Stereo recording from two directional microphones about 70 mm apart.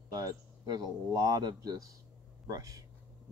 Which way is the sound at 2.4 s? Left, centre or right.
Right.